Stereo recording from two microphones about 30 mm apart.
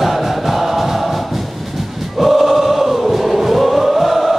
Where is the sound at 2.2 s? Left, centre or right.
Centre.